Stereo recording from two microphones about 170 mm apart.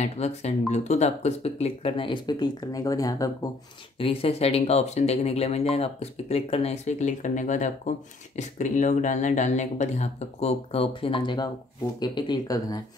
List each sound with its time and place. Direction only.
0.0 s speech: 40° left (ahead or behind); by 3.3 s 20° left (ahead or behind)
4.0 s speech: 35° left (ahead or behind)